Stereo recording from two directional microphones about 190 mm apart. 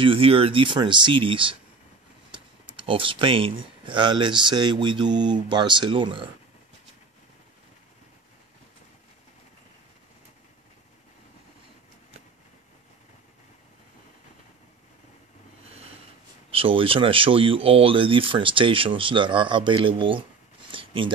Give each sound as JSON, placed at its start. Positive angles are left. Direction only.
{"t": 0.0, "sound": "speech", "side_deg": -30}
{"t": 2.9, "sound": "speech", "side_deg": -25}
{"t": 16.4, "sound": "speech", "side_deg": -30}
{"t": 20.7, "sound": "a sound", "side_deg": -25}